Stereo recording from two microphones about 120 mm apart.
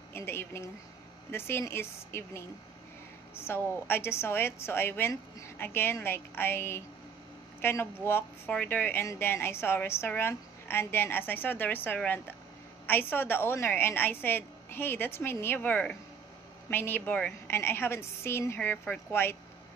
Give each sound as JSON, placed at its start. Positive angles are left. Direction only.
{"t": 0.1, "sound": "a woman's voice", "side_deg": 20}